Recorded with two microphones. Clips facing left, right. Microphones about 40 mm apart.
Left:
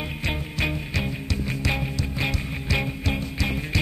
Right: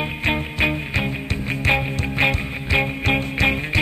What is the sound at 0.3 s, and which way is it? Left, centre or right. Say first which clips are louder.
Music: right 7 dB; right.